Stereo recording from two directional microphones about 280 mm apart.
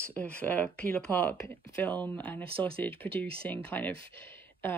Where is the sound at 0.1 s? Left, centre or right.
Centre.